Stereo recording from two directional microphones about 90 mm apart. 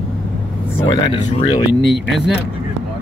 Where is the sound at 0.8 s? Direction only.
55° left (ahead or behind).